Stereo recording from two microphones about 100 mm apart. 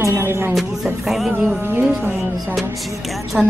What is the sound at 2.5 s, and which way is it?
Speech, centre (ahead or behind).